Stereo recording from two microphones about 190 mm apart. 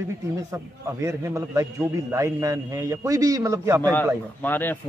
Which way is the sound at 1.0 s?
15° right (ahead or behind).